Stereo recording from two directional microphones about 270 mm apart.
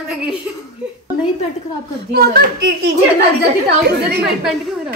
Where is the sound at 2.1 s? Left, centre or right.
Right.